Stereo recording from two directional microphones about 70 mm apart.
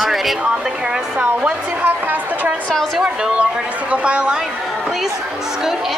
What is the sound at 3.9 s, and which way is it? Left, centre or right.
Speech, centre.